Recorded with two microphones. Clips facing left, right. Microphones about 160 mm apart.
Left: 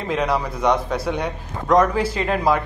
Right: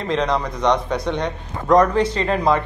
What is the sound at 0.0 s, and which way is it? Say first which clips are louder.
A man's voice: right 1 dB; 5° left (ahead or behind).